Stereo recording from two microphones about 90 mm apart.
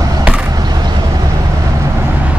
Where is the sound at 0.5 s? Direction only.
50° right (ahead or behind).